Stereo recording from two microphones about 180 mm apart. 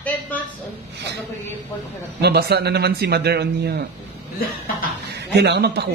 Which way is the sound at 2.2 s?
65° right (ahead or behind).